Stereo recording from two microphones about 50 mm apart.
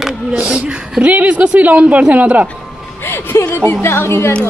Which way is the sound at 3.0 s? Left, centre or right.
Left.